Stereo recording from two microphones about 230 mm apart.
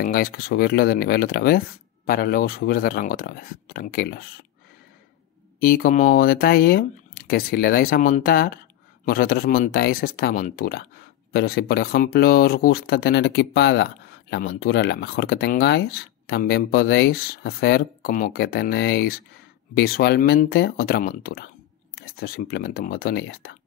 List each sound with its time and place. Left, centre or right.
0.0 s speech: left
5.6 s speech: left